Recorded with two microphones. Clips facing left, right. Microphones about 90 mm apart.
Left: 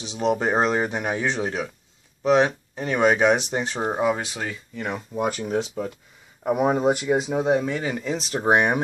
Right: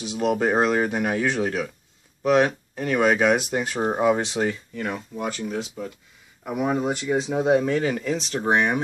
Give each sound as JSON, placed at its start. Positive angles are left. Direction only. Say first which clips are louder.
{"t": 0.0, "sound": "speech", "louder": "right 1 dB", "side_deg": -10}
{"t": 0.4, "sound": "speech", "louder": "right 1 dB", "side_deg": 25}
{"t": 3.8, "sound": "speech", "louder": "right 3 dB", "side_deg": 0}
{"t": 5.1, "sound": "speech", "louder": "left 4 dB", "side_deg": 20}
{"t": 5.4, "sound": "speech", "louder": "left 4 dB", "side_deg": 30}